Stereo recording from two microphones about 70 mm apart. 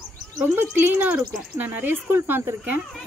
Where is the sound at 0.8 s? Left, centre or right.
Right.